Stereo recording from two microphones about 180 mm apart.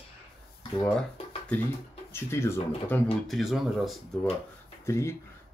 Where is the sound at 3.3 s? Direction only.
Centre (ahead or behind).